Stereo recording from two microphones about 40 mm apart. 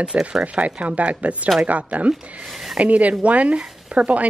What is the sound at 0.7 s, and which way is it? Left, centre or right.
A woman's voice, right.